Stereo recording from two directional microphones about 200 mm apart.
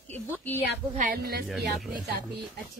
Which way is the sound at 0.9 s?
45° right (ahead or behind).